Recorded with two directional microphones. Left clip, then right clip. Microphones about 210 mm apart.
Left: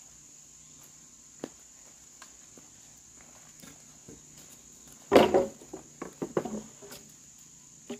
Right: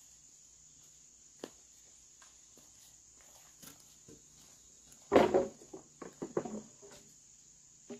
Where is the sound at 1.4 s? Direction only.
55° right (ahead or behind).